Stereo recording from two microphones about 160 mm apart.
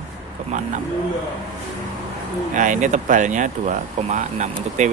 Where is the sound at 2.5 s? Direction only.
55° right (ahead or behind).